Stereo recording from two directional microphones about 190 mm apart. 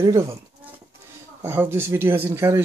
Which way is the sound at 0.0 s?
15° right (ahead or behind).